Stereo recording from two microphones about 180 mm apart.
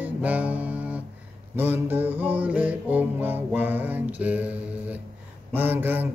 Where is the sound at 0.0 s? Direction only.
10° right (ahead or behind).